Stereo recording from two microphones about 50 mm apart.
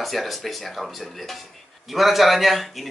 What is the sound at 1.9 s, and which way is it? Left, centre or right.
Speech, centre.